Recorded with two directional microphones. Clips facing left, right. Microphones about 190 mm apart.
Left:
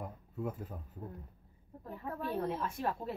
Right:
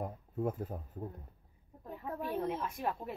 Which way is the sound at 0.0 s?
50° right (ahead or behind).